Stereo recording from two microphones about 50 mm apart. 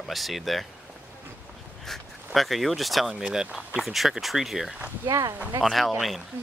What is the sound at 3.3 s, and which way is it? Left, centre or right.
Speech, centre.